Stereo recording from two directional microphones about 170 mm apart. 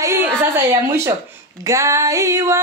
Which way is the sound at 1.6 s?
15° right (ahead or behind).